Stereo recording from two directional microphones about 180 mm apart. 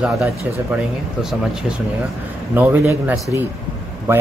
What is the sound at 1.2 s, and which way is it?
A man's voice, centre (ahead or behind).